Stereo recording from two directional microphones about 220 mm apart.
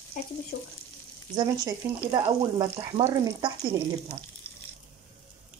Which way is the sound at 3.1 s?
15° right (ahead or behind).